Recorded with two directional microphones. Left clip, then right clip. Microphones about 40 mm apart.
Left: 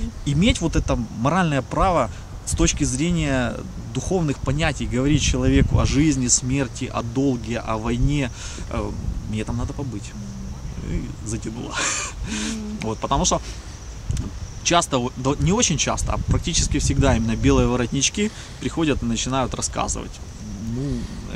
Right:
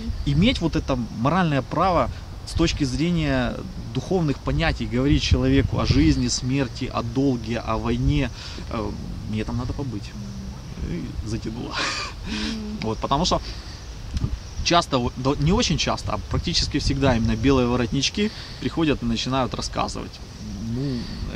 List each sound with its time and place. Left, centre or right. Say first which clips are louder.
0.2 s speech: left 1 dB; left
3.1 s speech: left 1 dB; left
6.2 s speech: left 3 dB; left
6.6 s speech: even; left
11.7 s a sound: left 1 dB; left
12.8 s speech: even; centre
14.6 s speech: left 1 dB; left
16.9 s speech: left 1 dB; centre
20.8 s speech: even; centre